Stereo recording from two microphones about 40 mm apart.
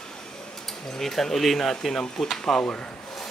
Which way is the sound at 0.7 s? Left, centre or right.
Centre.